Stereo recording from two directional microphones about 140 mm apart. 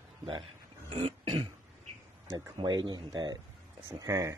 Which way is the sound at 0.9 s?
45° right (ahead or behind).